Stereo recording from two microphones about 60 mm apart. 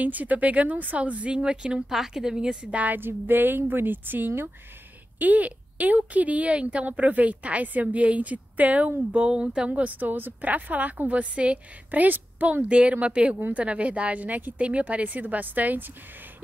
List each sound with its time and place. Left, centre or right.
0.0 s a woman's voice: right
3.0 s a woman's voice: right
12.6 s a woman's voice: centre